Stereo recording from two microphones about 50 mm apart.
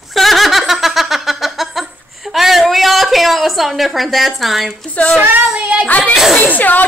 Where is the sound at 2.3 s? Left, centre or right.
Centre.